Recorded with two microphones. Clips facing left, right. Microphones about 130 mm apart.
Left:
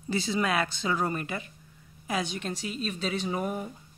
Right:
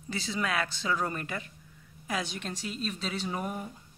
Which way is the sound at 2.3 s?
5° left (ahead or behind).